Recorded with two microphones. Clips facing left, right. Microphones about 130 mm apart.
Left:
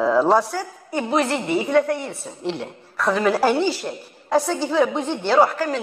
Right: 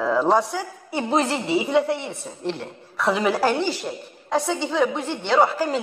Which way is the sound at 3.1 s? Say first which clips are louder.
Left 2 dB; 5° right (ahead or behind).